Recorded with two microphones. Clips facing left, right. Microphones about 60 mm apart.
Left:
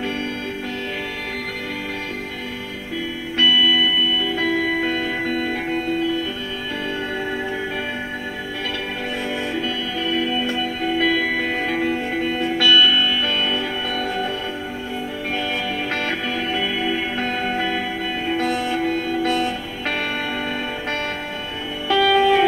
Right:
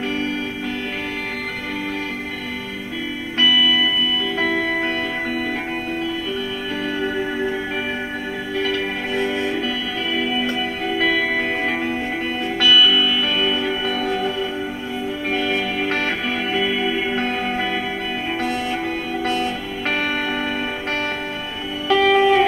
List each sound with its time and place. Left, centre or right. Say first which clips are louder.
12.9 s music: right 1 dB; right
15.3 s music: right 3 dB; right
16.5 s music: right 3 dB; centre
18.7 s music: left 2 dB; right
21.8 s music: right 1 dB; right